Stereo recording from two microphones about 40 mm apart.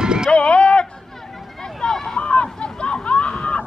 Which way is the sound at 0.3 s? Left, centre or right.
Left.